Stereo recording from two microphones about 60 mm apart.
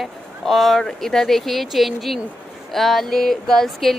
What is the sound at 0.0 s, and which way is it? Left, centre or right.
Speech, centre.